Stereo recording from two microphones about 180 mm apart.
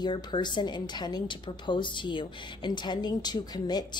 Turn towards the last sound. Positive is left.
turn(degrees=25)  # may be behind; listen again after turning